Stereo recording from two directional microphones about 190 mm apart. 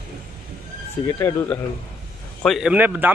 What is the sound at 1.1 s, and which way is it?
Speech, 15° left (ahead or behind).